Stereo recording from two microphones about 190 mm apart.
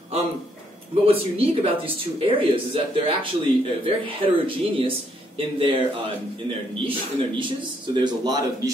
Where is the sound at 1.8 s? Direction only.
30° right (ahead or behind).